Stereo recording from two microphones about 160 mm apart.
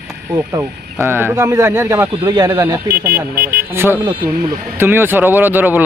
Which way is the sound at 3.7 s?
15° right (ahead or behind).